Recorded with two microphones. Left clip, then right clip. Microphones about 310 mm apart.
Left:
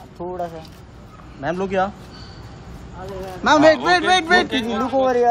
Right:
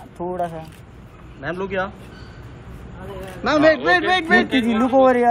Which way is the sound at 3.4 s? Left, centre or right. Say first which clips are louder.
Left 2 dB; left.